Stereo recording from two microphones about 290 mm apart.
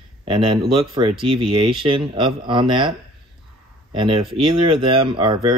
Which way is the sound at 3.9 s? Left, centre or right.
Centre.